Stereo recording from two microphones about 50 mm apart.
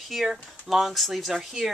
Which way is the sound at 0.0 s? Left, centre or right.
Centre.